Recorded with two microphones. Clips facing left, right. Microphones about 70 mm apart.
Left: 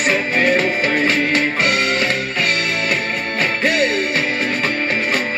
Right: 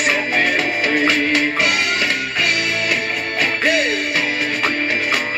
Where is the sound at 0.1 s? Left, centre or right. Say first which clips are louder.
Left 5 dB; left.